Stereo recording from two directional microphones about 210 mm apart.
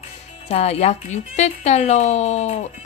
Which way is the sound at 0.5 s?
30° left (ahead or behind).